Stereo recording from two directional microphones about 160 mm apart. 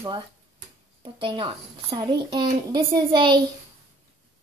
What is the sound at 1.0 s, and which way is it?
A child's voice, 30° right (ahead or behind).